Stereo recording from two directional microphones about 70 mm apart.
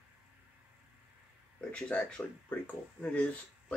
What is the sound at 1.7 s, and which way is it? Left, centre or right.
Speech, centre.